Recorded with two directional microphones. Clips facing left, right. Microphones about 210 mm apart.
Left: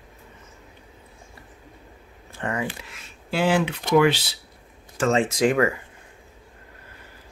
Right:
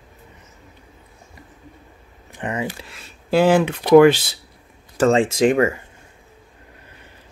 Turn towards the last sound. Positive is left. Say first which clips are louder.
# right 4 dB
turn(degrees=-25)  # may be behind; listen again after turning